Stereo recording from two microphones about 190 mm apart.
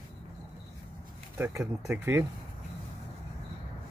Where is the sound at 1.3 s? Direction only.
10° right (ahead or behind).